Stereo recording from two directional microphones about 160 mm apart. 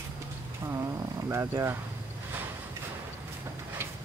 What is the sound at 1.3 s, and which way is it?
Speech, 15° right (ahead or behind).